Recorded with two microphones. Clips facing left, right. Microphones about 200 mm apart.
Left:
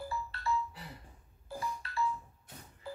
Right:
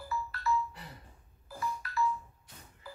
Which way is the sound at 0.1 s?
25° left (ahead or behind).